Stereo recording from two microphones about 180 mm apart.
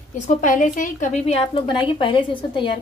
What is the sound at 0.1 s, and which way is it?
A woman's voice, 45° left (ahead or behind).